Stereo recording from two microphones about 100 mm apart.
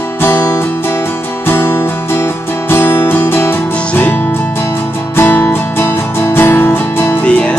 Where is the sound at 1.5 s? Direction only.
20° left (ahead or behind).